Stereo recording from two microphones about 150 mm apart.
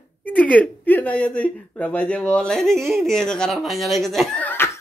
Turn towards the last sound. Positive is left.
turn(degrees=10)  # may be behind; listen again after turning